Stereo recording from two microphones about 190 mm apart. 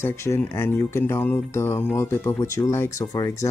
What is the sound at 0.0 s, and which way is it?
Speech, 15° left (ahead or behind).